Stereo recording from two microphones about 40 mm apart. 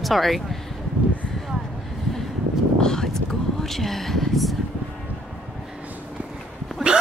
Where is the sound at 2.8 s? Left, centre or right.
Centre.